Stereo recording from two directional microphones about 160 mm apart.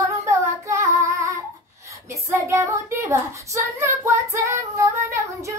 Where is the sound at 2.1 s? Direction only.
15° right (ahead or behind).